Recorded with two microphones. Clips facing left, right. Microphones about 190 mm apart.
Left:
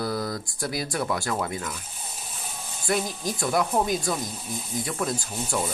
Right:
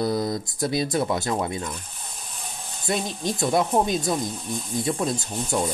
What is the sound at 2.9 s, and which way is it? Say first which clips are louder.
Speech: right 1 dB; 25° right (ahead or behind).